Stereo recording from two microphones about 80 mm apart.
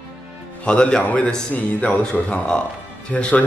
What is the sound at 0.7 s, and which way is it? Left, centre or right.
Speech, centre.